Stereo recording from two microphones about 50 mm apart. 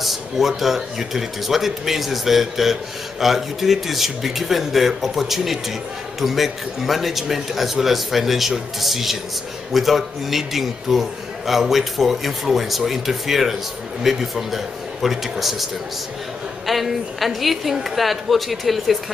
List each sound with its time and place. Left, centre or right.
0.0 s speech: centre